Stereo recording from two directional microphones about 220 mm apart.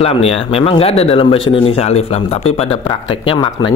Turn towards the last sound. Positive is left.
turn(degrees=25)  # may be behind; listen again after turning